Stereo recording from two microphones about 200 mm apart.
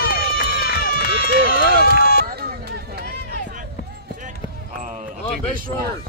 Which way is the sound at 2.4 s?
50° right (ahead or behind).